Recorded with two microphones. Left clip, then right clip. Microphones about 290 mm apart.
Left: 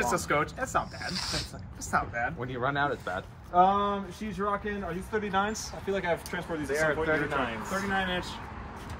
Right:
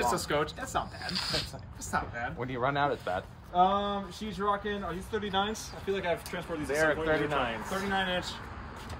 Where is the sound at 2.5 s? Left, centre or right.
Right.